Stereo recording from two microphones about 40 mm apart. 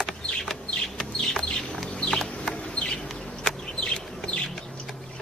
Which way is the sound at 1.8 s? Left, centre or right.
Left.